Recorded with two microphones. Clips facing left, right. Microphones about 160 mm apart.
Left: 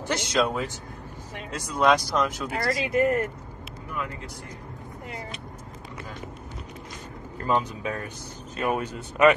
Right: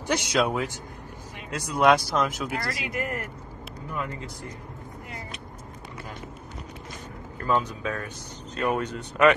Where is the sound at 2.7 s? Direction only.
30° left (ahead or behind).